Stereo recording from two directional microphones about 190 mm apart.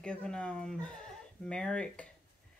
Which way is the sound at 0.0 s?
5° left (ahead or behind).